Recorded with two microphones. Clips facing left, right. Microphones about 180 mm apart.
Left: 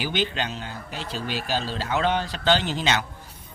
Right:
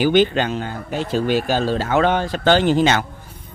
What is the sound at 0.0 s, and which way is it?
Speech, 50° right (ahead or behind).